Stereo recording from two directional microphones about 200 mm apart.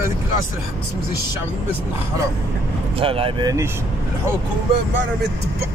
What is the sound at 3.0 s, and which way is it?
Speech, 25° right (ahead or behind).